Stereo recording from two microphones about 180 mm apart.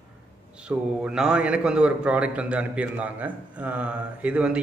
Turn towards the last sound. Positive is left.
turn(degrees=-5)  # may be behind; listen again after turning